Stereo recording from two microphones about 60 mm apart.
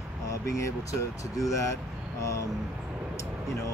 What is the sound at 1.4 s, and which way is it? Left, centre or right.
Speech, left.